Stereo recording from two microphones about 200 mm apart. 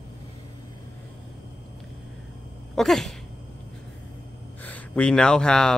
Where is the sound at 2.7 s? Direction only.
Centre (ahead or behind).